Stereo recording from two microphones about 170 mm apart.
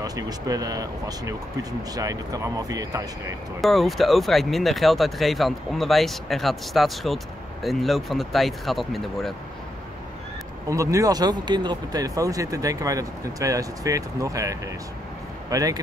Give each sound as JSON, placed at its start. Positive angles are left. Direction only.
{"t": 0.0, "sound": "speech", "side_deg": -20}
{"t": 3.6, "sound": "speech", "side_deg": 0}
{"t": 10.7, "sound": "speech", "side_deg": -20}